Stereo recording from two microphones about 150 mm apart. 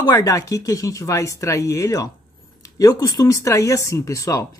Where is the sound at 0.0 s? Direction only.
20° left (ahead or behind).